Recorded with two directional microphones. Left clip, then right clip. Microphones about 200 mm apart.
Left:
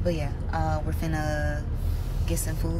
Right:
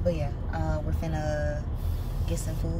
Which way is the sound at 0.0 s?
5° right (ahead or behind).